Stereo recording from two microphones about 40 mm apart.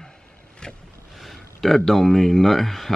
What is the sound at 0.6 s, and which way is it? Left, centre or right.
Vehicle, centre.